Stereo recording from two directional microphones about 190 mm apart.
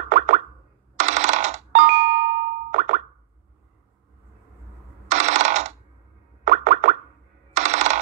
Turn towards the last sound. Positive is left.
turn(degrees=-40)  # may be behind; listen again after turning